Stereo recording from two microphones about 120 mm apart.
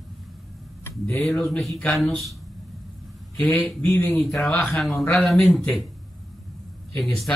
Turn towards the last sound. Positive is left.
turn(degrees=0)  # may be behind; listen again after turning